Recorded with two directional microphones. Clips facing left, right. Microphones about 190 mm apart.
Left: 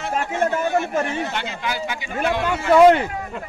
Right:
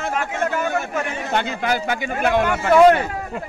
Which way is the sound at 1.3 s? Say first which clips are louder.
Right 5 dB; 50° right (ahead or behind).